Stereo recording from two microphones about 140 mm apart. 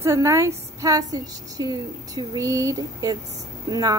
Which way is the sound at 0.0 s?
20° right (ahead or behind).